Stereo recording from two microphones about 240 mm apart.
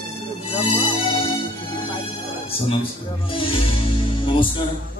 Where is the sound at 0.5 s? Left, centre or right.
Centre.